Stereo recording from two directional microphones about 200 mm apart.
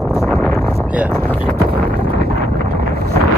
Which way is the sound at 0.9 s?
5° right (ahead or behind).